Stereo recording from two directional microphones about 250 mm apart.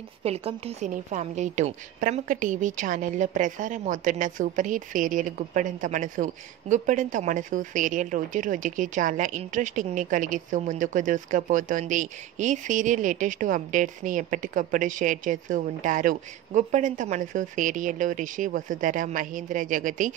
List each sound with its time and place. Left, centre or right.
0.2 s a woman's voice: right